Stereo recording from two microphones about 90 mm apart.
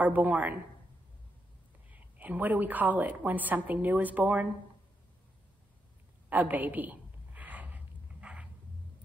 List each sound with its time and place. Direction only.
0.0 s a man's voice: 20° right (ahead or behind)
1.9 s a woman's voice: 20° right (ahead or behind)
6.2 s a sound: 20° right (ahead or behind)